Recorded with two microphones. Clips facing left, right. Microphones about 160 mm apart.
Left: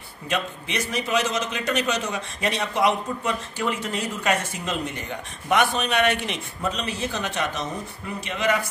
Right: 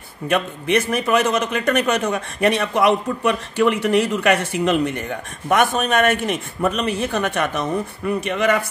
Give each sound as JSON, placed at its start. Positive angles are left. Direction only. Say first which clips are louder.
{"t": 0.3, "sound": "a man's voice", "louder": "right 9 dB", "side_deg": -55}